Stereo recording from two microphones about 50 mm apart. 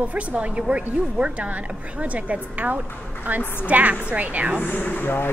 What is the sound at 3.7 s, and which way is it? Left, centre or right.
Speech, right.